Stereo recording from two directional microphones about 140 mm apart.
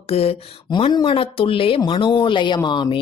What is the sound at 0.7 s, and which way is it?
Speech, 35° left (ahead or behind).